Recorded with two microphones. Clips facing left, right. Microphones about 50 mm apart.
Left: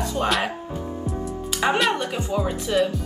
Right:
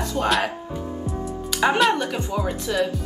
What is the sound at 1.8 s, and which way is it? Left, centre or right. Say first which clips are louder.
Speech: right 2 dB; centre.